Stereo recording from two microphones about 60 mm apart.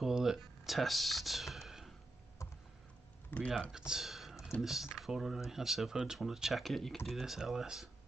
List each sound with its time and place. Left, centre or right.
0.0 s speech: centre
3.3 s speech: left
3.7 s speech: centre